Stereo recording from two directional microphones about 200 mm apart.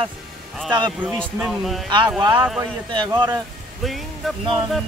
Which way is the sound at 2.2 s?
10° right (ahead or behind).